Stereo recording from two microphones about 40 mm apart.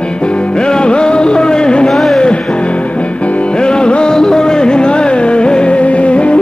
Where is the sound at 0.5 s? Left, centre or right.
Left.